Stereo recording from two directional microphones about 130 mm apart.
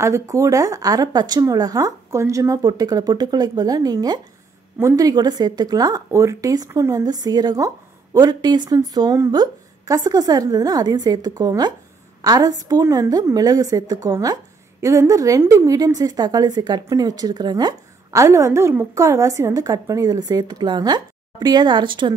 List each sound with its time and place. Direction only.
0.0 s a woman's voice: 25° right (ahead or behind)